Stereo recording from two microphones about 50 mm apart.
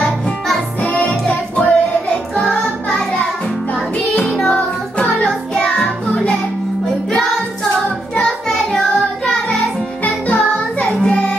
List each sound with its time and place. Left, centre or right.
1.2 s music: left
2.4 s child singing: centre
4.4 s music: left
7.1 s music: centre
8.2 s child singing: centre
10.0 s music: left